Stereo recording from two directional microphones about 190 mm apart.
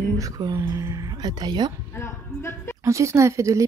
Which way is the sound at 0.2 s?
20° right (ahead or behind).